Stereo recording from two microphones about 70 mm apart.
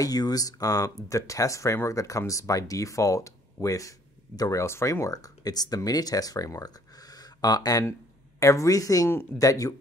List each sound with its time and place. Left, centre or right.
0.0 s speech: left
4.6 s speech: left
8.4 s speech: left